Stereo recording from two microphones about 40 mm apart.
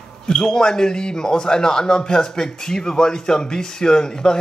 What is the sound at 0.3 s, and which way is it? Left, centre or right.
Speech, centre.